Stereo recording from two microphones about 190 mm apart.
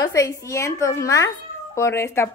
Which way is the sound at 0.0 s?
15° left (ahead or behind).